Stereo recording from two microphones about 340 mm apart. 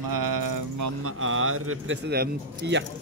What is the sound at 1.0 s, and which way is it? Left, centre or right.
Speech, right.